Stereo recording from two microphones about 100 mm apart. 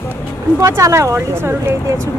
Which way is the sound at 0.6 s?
30° right (ahead or behind).